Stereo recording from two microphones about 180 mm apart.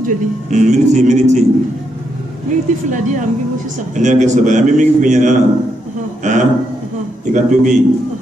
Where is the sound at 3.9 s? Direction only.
45° right (ahead or behind).